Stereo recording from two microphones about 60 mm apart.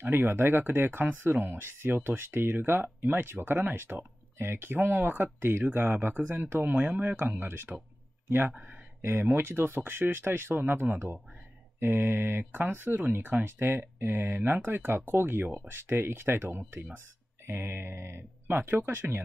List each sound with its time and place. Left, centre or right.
0.0 s speech: right
8.5 s speech: right
9.0 s speech: right